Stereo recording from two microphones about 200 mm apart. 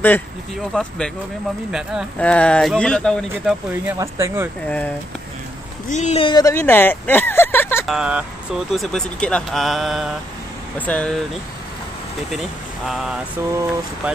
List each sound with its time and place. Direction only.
0.7 s speech: 5° left (ahead or behind)
3.3 s speech: 10° right (ahead or behind)
4.6 s speech: 5° left (ahead or behind)
5.9 s speech: 35° left (ahead or behind)
6.2 s speech: 20° left (ahead or behind)
7.8 s speech: 5° right (ahead or behind)
12.3 s speech: centre (ahead or behind)
13.5 s speech: 15° right (ahead or behind)